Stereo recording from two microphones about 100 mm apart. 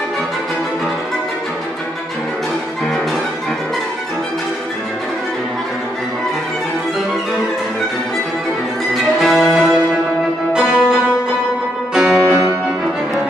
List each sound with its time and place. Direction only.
9.2 s music: centre (ahead or behind)
11.9 s music: 5° right (ahead or behind)